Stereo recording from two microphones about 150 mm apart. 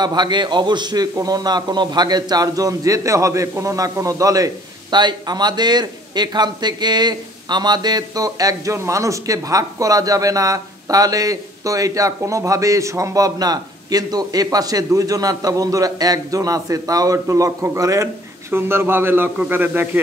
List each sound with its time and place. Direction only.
0.0 s a man's voice: 30° right (ahead or behind); by 20.0 s 15° right (ahead or behind)